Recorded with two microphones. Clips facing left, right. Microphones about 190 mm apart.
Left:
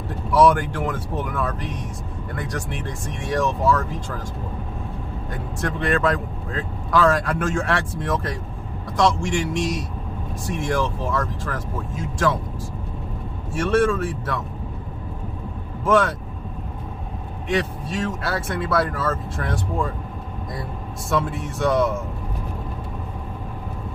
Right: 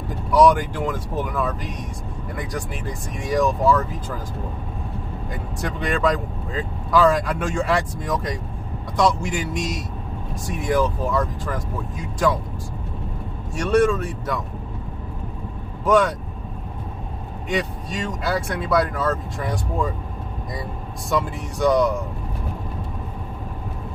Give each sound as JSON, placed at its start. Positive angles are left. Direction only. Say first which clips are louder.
{"t": 0.3, "sound": "speech", "louder": "right 1 dB", "side_deg": 0}
{"t": 5.3, "sound": "speech", "louder": "left 2 dB", "side_deg": 0}
{"t": 13.6, "sound": "speech", "louder": "right 1 dB", "side_deg": 0}
{"t": 15.9, "sound": "speech", "louder": "right 1 dB", "side_deg": 0}
{"t": 17.5, "sound": "speech", "louder": "left 2 dB", "side_deg": 0}
{"t": 21.1, "sound": "speech", "louder": "even", "side_deg": 0}